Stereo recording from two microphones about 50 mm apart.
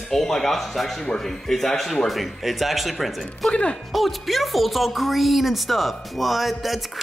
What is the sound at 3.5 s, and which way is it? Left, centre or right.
Speech, left.